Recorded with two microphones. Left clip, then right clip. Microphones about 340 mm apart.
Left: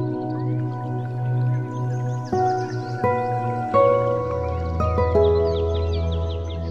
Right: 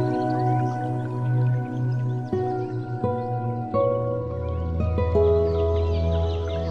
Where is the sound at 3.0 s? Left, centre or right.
Left.